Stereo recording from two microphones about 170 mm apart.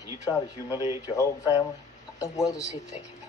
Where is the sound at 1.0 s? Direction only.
20° left (ahead or behind).